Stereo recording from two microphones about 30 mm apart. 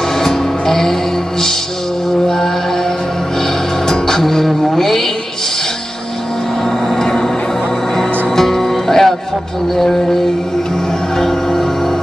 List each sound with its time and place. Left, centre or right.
0.2 s music: centre
2.2 s music: centre
4.2 s a sound: centre
7.0 s music: centre
11.1 s music: centre